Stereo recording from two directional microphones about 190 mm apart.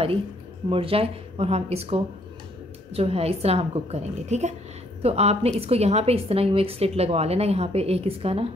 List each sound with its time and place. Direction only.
0.7 s a woman's voice: 30° right (ahead or behind)